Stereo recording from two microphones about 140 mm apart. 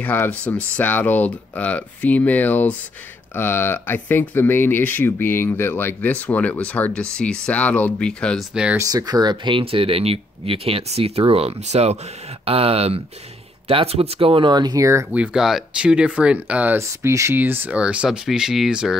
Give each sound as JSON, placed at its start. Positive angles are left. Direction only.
{"t": 0.0, "sound": "speech", "side_deg": 10}
{"t": 8.7, "sound": "speech", "side_deg": -25}
{"t": 15.1, "sound": "speech", "side_deg": -5}